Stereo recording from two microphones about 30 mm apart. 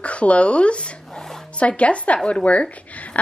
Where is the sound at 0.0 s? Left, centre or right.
Left.